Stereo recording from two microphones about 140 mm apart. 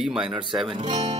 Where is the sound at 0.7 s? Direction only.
35° right (ahead or behind).